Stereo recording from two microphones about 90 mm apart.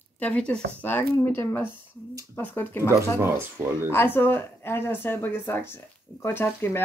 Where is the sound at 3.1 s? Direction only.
25° right (ahead or behind).